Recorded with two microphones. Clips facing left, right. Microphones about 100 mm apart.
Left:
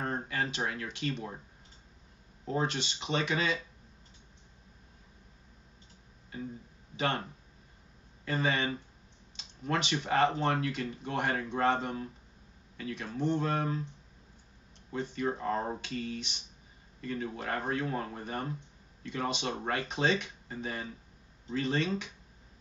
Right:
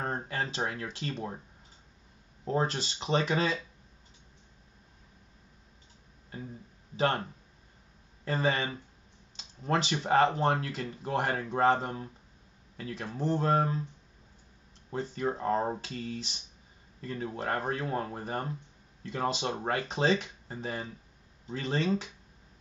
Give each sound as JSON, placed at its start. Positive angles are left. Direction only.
{"t": 0.0, "sound": "speech", "side_deg": -35}
{"t": 2.4, "sound": "speech", "side_deg": -35}
{"t": 7.0, "sound": "speech", "side_deg": -35}
{"t": 8.3, "sound": "speech", "side_deg": -35}
{"t": 14.9, "sound": "speech", "side_deg": -35}